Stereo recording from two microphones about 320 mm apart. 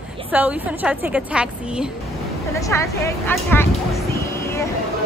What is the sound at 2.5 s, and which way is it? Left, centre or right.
Speech, centre.